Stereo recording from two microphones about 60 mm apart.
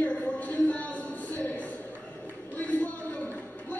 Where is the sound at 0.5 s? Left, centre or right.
Left.